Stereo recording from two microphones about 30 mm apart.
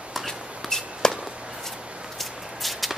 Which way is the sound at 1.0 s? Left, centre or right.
Left.